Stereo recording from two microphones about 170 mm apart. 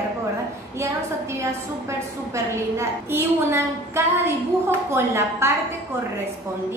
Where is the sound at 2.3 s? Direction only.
15° right (ahead or behind).